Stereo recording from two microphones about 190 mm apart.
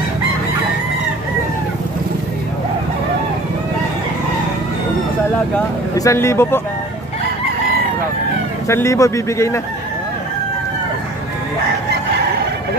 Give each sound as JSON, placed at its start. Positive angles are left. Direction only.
{"t": 5.9, "sound": "speech", "side_deg": 15}
{"t": 8.6, "sound": "speech", "side_deg": 15}